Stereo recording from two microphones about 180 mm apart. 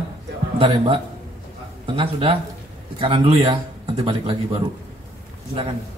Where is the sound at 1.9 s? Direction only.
30° right (ahead or behind).